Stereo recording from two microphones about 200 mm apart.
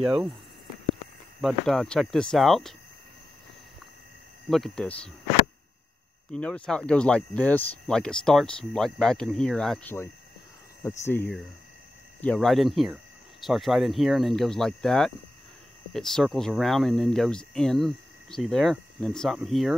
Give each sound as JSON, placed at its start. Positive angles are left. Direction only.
{"t": 0.0, "sound": "speech", "side_deg": -5}
{"t": 1.4, "sound": "speech", "side_deg": 0}
{"t": 4.5, "sound": "speech", "side_deg": 0}
{"t": 6.3, "sound": "speech", "side_deg": 5}